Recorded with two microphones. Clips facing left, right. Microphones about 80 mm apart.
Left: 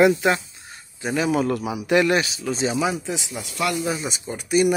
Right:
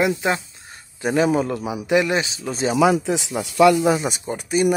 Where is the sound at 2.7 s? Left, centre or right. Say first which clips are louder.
Right 7 dB; right.